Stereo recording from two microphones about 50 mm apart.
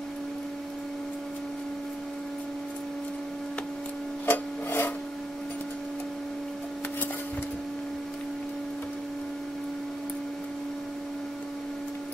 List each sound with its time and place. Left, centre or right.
4.3 s rub: left